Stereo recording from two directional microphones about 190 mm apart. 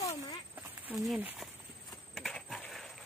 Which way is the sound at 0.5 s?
10° right (ahead or behind).